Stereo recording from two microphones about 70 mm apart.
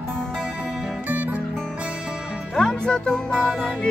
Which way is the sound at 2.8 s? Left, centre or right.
Centre.